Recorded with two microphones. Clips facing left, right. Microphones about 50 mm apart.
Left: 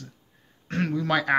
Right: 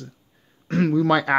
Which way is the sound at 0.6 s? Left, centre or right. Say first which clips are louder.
Right 7 dB; centre.